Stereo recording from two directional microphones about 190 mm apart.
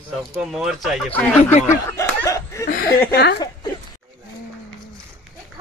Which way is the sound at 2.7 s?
50° left (ahead or behind).